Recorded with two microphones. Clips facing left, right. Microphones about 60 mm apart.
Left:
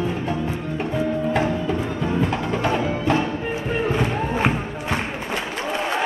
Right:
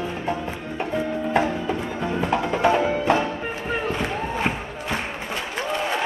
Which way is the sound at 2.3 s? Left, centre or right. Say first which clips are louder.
Right 3 dB; centre.